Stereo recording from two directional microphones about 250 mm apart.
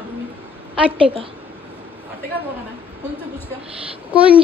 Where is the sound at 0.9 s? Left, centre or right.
Right.